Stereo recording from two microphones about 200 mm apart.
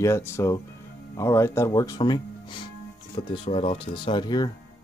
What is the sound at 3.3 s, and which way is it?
Speech, 30° left (ahead or behind).